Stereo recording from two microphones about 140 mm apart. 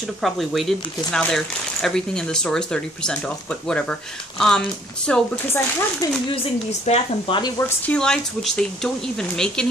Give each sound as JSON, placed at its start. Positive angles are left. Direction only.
{"t": 0.2, "sound": "speech", "side_deg": 0}
{"t": 5.9, "sound": "speech", "side_deg": 35}
{"t": 7.5, "sound": "speech", "side_deg": 15}